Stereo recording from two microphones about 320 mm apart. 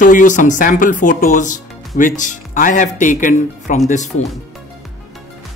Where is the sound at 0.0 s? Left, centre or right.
Left.